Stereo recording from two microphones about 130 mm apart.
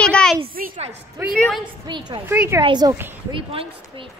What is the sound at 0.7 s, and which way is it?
Speech, 55° right (ahead or behind).